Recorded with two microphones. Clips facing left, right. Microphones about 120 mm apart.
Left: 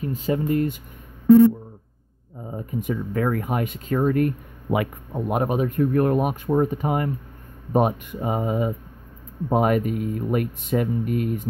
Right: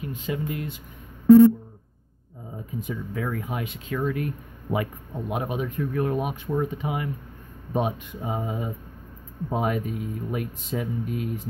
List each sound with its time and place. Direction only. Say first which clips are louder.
0.0 s speech: left 6 dB; 40° left (ahead or behind)
2.5 s speech: left 6 dB; 60° left (ahead or behind)
4.6 s speech: left 4 dB; 75° left (ahead or behind)
5.3 s speech: left 6 dB; 50° left (ahead or behind)